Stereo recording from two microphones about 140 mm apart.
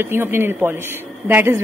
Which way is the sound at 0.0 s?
15° right (ahead or behind).